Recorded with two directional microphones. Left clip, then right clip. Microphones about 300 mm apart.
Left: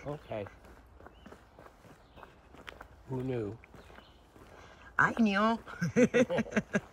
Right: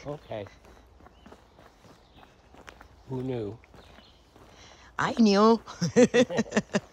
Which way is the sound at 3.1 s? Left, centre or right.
Right.